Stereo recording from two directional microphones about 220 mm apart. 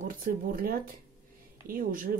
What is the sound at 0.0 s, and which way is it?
Speech, 35° right (ahead or behind).